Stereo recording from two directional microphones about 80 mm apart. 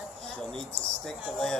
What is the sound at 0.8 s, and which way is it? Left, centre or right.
Speech, centre.